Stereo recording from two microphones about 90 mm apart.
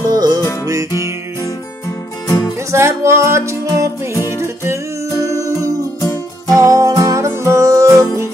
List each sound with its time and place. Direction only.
0.0 s music: 45° right (ahead or behind)
0.7 s music: 35° right (ahead or behind)
2.2 s music: 40° left (ahead or behind)
2.7 s music: 30° right (ahead or behind)
5.2 s music: 35° right (ahead or behind)
5.9 s music: 40° left (ahead or behind)
6.5 s music: 40° right (ahead or behind)